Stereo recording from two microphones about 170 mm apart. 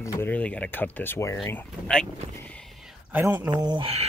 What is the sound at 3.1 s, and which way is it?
Speech, 10° right (ahead or behind).